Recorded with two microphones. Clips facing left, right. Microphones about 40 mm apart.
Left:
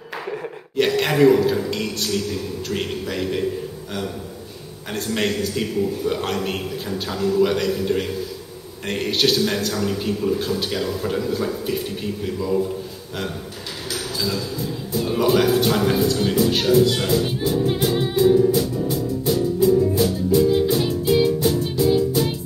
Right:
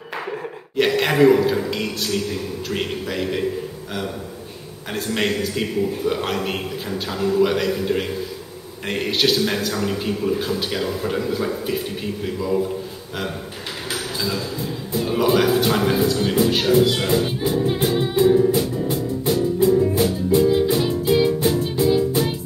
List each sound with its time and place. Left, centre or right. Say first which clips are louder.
0.7 s a sound: right 1 dB; centre
1.7 s a man's voice: even; centre
4.9 s a man's voice: right 1 dB; centre
7.4 s a man's voice: even; centre
13.8 s a sound: even; right
15.0 s speech: even; centre
17.1 s speech: right 1 dB; right
18.2 s music: even; centre
18.9 s music: even; right
20.4 s music: right 1 dB; right
20.8 s music: even; centre
21.3 s music: even; right